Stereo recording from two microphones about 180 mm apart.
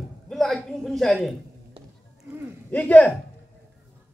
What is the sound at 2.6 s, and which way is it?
Speech, 10° left (ahead or behind).